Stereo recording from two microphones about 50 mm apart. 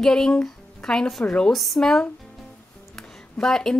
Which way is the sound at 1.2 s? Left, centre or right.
Left.